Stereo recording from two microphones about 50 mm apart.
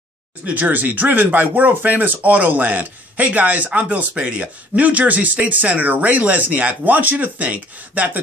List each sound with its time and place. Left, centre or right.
0.5 s speech: right